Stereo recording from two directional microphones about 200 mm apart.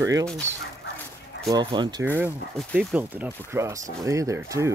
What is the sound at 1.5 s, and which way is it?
Speech, 20° right (ahead or behind).